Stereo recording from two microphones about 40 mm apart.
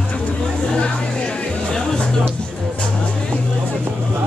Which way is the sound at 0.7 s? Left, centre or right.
Left.